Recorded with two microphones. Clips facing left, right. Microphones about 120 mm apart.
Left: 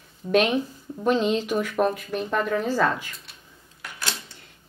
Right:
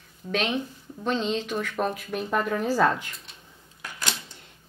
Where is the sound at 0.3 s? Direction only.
10° left (ahead or behind).